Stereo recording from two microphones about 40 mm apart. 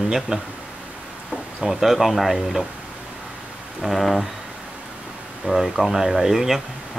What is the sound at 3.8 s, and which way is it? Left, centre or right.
Speech, centre.